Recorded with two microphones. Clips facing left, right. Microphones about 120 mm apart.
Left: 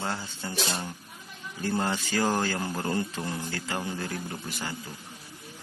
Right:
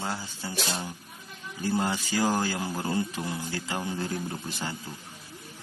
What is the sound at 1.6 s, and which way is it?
A man's voice, 10° right (ahead or behind).